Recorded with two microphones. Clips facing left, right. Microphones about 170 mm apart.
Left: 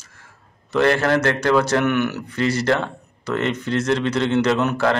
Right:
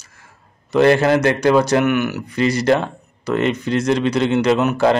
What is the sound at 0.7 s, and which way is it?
A man's voice, 15° right (ahead or behind).